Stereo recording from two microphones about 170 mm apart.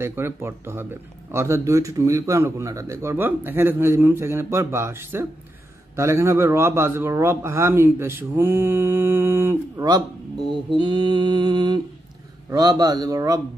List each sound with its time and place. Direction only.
0.0 s a man's voice: 15° right (ahead or behind)
10.5 s mantra: 25° right (ahead or behind)